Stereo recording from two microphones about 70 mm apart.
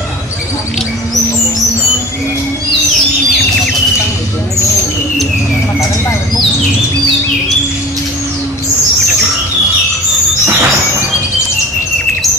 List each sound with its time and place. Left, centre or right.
10.5 s music: right